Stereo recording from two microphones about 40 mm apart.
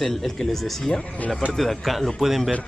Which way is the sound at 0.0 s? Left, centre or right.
Centre.